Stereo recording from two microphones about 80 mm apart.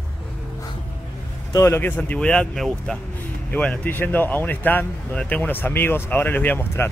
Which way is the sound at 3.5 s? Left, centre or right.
Left.